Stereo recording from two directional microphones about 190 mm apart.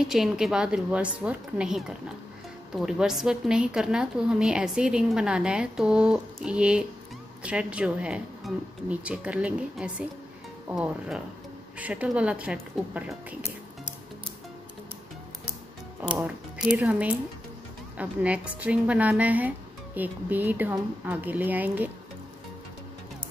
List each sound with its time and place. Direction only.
0.0 s a woman's voice: centre (ahead or behind)
16.0 s speech: 10° right (ahead or behind)